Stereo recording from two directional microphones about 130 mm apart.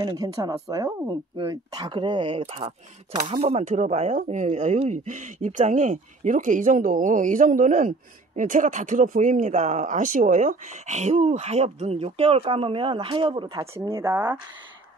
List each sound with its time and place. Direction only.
0.0 s speech: 30° right (ahead or behind)
1.9 s speech: 40° right (ahead or behind)
13.7 s speech: 20° right (ahead or behind)